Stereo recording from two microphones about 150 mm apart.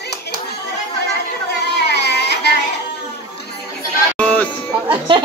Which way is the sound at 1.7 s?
90° left.